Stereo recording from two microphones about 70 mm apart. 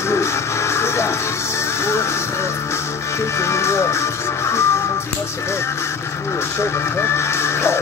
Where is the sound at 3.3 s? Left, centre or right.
Left.